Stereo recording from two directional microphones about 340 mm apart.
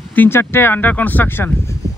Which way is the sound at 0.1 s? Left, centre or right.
Centre.